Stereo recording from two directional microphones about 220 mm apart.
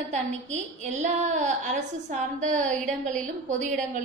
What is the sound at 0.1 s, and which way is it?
A woman's voice, 30° right (ahead or behind).